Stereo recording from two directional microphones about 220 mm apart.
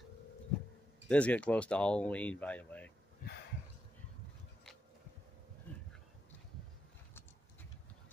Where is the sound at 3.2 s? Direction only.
40° left (ahead or behind).